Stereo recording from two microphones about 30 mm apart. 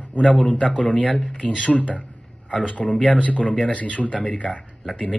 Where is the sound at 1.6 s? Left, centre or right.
Left.